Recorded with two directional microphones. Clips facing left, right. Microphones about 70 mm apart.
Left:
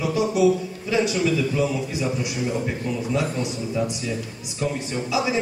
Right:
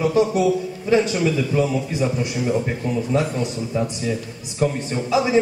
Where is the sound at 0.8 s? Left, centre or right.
Right.